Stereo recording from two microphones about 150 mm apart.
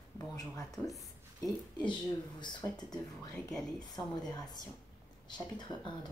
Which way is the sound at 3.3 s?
5° left (ahead or behind).